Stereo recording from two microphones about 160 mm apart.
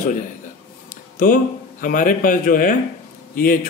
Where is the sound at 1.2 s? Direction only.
60° left (ahead or behind).